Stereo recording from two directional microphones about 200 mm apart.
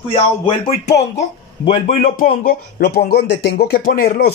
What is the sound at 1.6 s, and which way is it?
Speech, 30° left (ahead or behind).